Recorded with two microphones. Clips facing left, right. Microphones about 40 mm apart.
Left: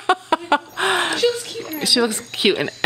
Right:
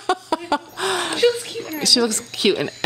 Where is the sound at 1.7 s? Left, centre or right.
Centre.